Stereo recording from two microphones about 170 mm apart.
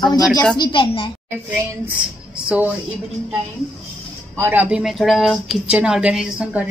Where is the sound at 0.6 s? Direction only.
30° left (ahead or behind).